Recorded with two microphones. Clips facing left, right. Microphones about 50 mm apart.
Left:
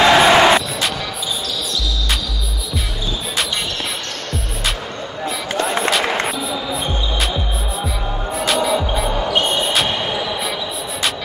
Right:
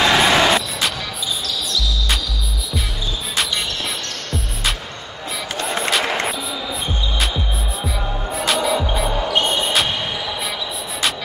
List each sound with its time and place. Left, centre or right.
0.0 s music: centre
5.6 s music: centre
7.8 s music: centre
9.8 s music: centre